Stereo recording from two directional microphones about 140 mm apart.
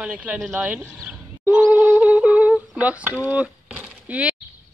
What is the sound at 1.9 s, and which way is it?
Humming, 10° right (ahead or behind).